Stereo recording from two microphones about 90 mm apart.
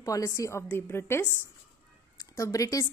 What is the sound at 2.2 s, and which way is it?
Speech, 40° left (ahead or behind).